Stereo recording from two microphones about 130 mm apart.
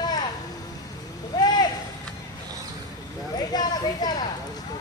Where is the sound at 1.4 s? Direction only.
30° left (ahead or behind).